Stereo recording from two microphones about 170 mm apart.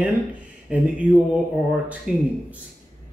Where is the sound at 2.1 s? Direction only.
Centre (ahead or behind).